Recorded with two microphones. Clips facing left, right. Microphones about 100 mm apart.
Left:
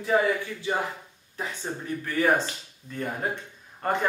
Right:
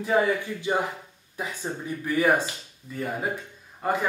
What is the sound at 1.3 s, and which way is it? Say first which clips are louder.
A man's voice: right 1 dB; 10° right (ahead or behind).